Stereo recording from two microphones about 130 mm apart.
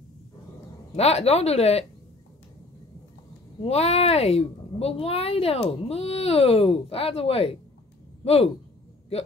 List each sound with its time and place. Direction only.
0.9 s a woman's voice: 55° left (ahead or behind)
3.6 s a woman's voice: 55° left (ahead or behind)